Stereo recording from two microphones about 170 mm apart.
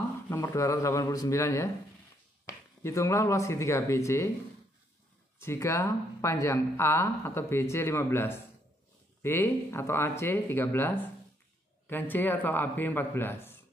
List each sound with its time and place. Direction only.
0.4 s a man's voice: 20° left (ahead or behind)
5.4 s speech: 15° left (ahead or behind)